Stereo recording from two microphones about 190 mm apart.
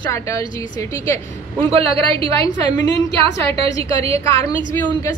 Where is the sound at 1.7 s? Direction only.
30° right (ahead or behind).